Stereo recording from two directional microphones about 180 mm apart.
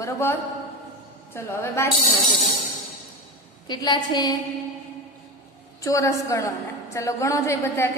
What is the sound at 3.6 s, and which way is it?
Speech, 25° left (ahead or behind).